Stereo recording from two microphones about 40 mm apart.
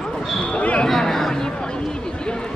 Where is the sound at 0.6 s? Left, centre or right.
Left.